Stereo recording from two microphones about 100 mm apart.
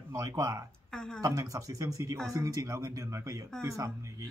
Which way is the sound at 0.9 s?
5° left (ahead or behind).